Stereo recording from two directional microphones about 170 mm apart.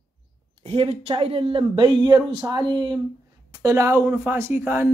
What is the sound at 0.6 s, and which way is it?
Speech, 35° right (ahead or behind).